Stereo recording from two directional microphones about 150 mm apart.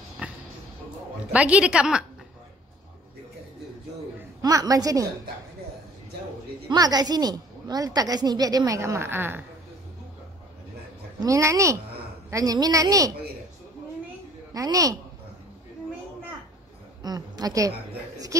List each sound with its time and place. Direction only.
1.3 s a woman's voice: 10° right (ahead or behind)
4.4 s a woman's voice: 25° right (ahead or behind)
6.7 s a woman's voice: 25° right (ahead or behind)
11.1 s a woman's voice: 20° right (ahead or behind)
14.5 s a woman's voice: 25° right (ahead or behind)
17.0 s a woman's voice: 25° right (ahead or behind)